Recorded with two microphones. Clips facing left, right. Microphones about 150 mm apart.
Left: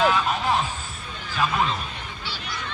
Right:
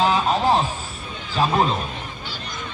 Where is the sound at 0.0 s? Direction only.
30° right (ahead or behind).